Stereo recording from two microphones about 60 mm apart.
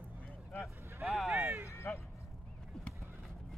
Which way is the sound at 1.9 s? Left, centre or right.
Left.